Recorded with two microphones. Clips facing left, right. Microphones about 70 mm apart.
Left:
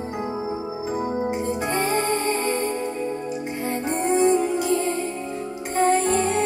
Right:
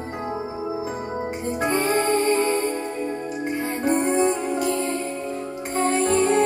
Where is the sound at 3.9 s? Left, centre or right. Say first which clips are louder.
Left 1 dB; right.